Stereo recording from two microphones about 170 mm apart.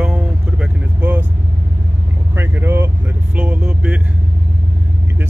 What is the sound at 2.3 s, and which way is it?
Vehicle, 15° right (ahead or behind).